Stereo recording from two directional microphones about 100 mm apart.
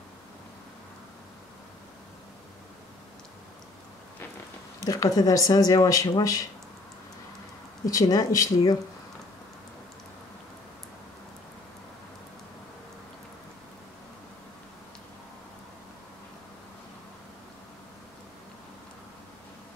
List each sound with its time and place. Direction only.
4.8 s speech: 35° left (ahead or behind)
7.8 s speech: 40° left (ahead or behind)